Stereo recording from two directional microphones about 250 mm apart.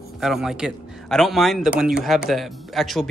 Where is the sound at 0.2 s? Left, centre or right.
Centre.